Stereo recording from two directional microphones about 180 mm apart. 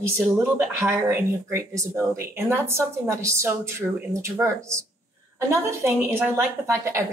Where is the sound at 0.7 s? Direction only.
15° right (ahead or behind).